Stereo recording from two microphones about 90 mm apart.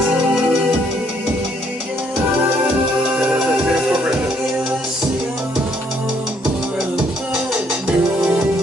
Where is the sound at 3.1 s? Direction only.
15° right (ahead or behind).